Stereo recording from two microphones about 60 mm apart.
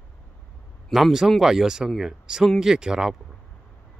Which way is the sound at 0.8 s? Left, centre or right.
Centre.